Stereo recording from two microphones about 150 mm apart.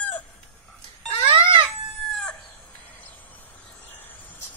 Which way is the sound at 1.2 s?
35° right (ahead or behind).